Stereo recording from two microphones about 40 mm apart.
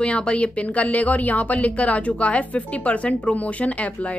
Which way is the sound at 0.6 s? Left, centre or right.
Left.